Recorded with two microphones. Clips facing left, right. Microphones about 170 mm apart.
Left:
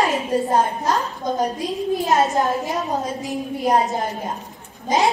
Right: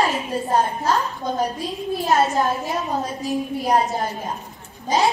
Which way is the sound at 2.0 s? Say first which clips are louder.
Right 1 dB; 20° left (ahead or behind).